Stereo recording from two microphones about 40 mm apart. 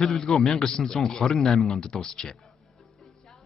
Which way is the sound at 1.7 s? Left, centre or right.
Centre.